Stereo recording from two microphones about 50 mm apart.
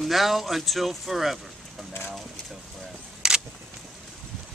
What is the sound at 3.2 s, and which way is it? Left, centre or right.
Single-lens reflex camera, centre.